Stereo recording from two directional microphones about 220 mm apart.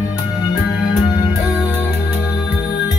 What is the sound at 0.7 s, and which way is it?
Music, 15° left (ahead or behind).